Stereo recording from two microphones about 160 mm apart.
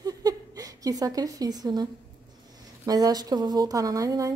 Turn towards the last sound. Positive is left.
turn(degrees=-20)  # may be behind; listen again after turning